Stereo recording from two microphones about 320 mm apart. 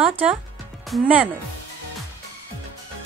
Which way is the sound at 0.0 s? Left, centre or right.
Centre.